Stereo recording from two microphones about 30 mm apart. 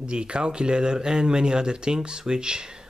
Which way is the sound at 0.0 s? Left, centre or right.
Right.